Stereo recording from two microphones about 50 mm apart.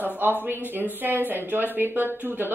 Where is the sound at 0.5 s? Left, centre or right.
Right.